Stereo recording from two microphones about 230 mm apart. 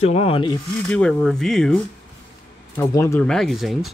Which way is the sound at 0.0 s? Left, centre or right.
Left.